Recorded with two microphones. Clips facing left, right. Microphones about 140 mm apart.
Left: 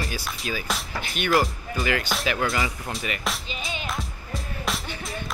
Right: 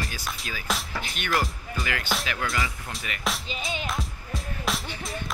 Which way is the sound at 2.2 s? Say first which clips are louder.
Left 4 dB; 25° left (ahead or behind).